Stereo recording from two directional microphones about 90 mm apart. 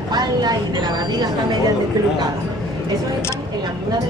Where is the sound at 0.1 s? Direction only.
50° right (ahead or behind).